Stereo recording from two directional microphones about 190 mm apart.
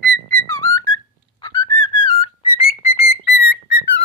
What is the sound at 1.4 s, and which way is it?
Whistle, 20° left (ahead or behind).